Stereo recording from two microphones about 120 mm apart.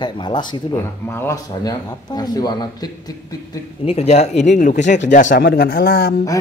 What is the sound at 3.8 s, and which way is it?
Speech, 65° left (ahead or behind).